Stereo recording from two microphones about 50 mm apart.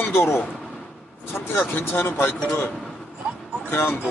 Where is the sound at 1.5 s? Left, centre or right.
Left.